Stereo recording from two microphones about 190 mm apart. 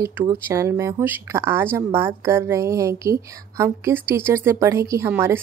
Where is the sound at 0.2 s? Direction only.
15° right (ahead or behind).